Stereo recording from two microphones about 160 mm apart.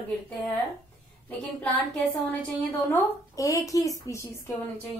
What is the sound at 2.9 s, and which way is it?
A woman's voice, 20° left (ahead or behind).